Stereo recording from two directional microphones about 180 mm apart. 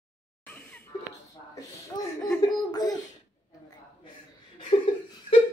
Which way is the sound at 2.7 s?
20° left (ahead or behind).